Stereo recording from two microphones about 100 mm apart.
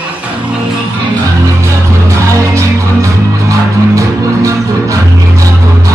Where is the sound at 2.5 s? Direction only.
30° right (ahead or behind).